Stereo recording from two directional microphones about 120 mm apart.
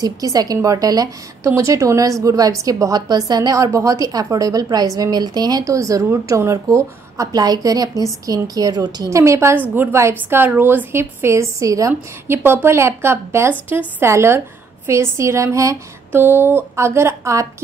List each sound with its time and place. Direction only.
0.0 s a woman's voice: 30° right (ahead or behind)
11.9 s a woman's voice: 15° right (ahead or behind)